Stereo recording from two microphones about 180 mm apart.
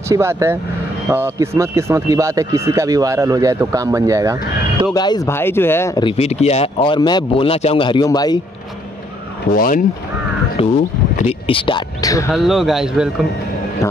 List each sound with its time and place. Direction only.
0.1 s speech: 15° right (ahead or behind)
4.9 s speech: 20° left (ahead or behind)
6.0 s speech: 35° left (ahead or behind)
9.6 s speech: 50° left (ahead or behind)
10.6 s speech: 30° left (ahead or behind)
12.3 s speech: centre (ahead or behind)